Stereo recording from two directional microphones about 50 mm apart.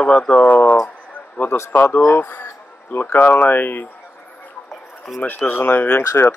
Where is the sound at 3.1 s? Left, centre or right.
Left.